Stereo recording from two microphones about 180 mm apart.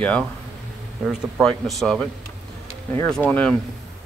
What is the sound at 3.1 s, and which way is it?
Speech, 5° left (ahead or behind).